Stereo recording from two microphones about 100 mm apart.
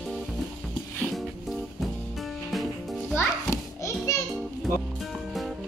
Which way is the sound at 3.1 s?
30° left (ahead or behind).